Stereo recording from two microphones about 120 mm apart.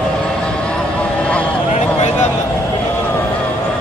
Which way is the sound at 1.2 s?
10° left (ahead or behind).